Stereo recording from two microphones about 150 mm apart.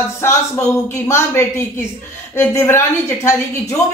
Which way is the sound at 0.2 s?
20° left (ahead or behind).